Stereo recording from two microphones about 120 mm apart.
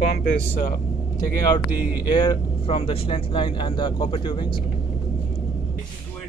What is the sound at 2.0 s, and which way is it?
Speech, 40° left (ahead or behind).